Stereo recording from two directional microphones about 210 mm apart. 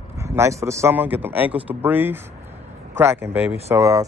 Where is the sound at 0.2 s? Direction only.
15° right (ahead or behind).